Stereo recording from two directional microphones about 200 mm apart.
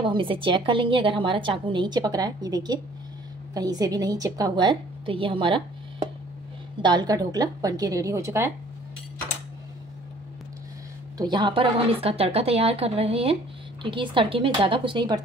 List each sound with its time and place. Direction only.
0.0 s a woman's voice: 25° right (ahead or behind)
11.1 s a woman's voice: 20° right (ahead or behind)